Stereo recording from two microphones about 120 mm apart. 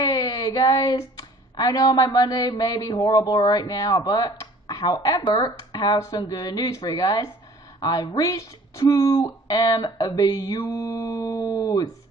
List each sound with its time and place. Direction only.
0.1 s speech: 30° left (ahead or behind)